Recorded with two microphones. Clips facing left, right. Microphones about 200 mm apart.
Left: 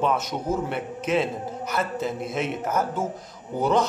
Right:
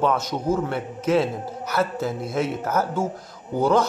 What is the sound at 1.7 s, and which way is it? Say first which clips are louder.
A woman's voice: right 3 dB; centre (ahead or behind).